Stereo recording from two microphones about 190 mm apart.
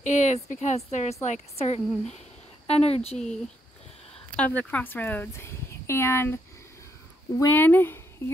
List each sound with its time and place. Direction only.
0.0 s a woman's voice: 40° left (ahead or behind)
4.4 s speech: 10° left (ahead or behind)